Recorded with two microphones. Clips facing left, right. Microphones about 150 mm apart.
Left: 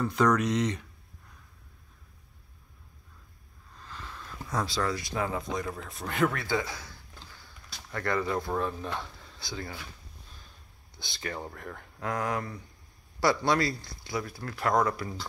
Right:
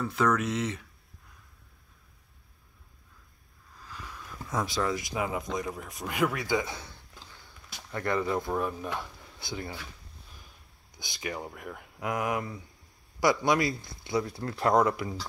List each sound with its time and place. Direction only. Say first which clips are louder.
0.0 s speech: left 2 dB; 5° right (ahead or behind)
3.7 s a sound: even; 10° right (ahead or behind)
5.9 s speech: left 2 dB; 15° right (ahead or behind)
7.4 s a sound: right 1 dB; 20° right (ahead or behind)
8.3 s speech: right 1 dB; 10° right (ahead or behind)
9.4 s speech: right 1 dB; 20° right (ahead or behind)
11.0 s speech: right 1 dB; 15° right (ahead or behind)